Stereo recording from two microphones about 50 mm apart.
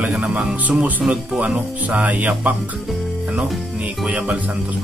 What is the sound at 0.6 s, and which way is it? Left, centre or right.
Speech, right.